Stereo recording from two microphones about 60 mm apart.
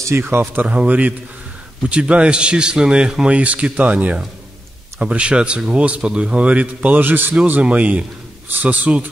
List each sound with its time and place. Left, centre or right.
0.2 s speech: right
0.6 s a man's voice: right